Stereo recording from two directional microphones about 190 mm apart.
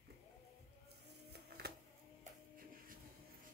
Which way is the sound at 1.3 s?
60° right (ahead or behind).